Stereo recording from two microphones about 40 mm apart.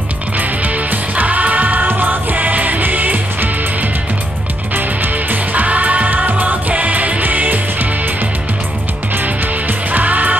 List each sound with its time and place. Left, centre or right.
0.4 s music: right
5.1 s music: right
6.7 s music: right
9.1 s music: right